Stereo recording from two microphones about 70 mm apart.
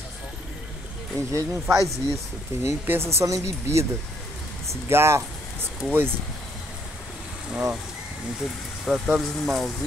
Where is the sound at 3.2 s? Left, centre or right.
Right.